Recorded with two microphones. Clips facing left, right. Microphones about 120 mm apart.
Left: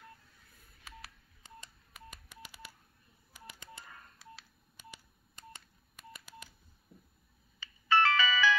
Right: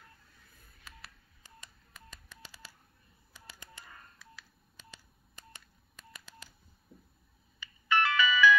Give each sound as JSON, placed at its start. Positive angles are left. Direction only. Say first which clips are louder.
{"t": 7.6, "sound": "music", "louder": "left 2 dB", "side_deg": 35}